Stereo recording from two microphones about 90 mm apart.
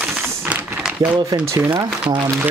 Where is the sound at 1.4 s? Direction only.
30° right (ahead or behind).